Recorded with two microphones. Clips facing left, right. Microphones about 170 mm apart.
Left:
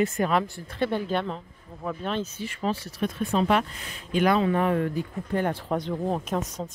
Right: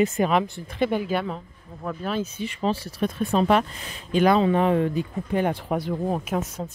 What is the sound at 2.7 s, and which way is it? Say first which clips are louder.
Speech: right 3 dB; 35° right (ahead or behind).